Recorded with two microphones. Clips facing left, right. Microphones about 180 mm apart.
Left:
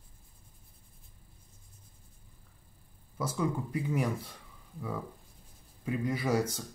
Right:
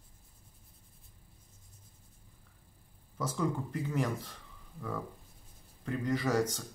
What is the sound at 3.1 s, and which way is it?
Speech, 10° left (ahead or behind).